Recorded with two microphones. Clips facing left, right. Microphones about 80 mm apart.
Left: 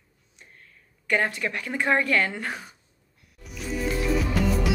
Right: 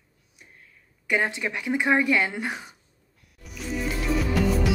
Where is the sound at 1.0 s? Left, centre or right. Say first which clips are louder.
Even; centre.